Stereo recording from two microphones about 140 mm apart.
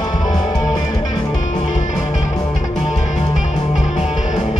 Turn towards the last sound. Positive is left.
turn(degrees=-5)  # may be behind; listen again after turning